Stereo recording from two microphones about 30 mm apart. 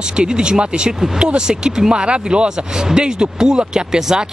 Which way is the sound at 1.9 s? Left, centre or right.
Right.